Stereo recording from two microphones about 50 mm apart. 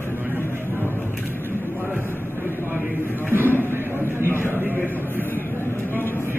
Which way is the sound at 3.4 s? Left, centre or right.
Left.